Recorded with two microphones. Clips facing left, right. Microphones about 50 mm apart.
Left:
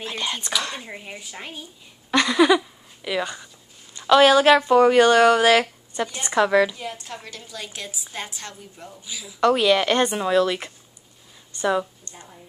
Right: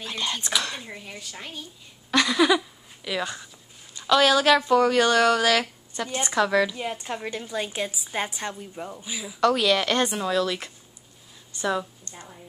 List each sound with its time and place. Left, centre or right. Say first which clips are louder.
0.4 s speech: left 1 dB; centre
0.7 s a woman's voice: left 2 dB; centre
4.1 s a woman's voice: left 5 dB; left
6.8 s a woman's voice: right 3 dB; right
9.4 s a woman's voice: left 3 dB; centre
12.1 s a sound: right 1 dB; centre